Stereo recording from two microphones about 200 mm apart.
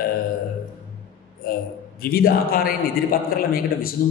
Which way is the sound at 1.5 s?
50° left (ahead or behind).